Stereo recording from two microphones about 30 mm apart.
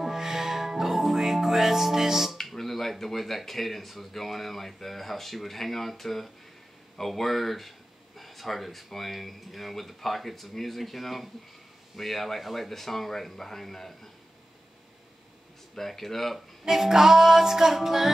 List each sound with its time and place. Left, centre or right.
0.0 s music: centre
2.5 s speech: centre
15.8 s speech: centre
16.3 s music: centre